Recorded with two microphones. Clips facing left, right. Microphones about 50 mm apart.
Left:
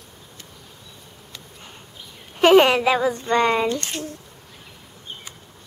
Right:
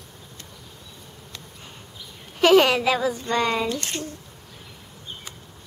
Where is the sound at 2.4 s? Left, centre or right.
Left.